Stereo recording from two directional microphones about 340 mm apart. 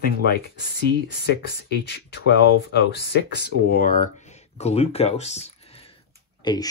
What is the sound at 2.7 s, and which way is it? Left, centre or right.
Speech, left.